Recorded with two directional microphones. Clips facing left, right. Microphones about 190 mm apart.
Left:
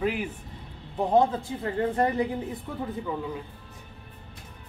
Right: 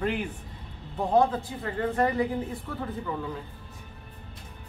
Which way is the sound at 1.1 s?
20° left (ahead or behind).